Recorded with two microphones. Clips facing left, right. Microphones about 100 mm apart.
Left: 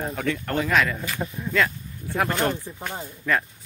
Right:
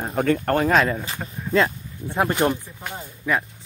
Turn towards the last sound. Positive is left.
turn(degrees=-10)  # may be behind; listen again after turning